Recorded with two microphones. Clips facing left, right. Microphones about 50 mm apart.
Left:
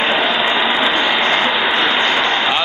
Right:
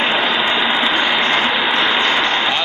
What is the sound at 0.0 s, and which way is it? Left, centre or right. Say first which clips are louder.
Vehicle: left 1 dB; centre.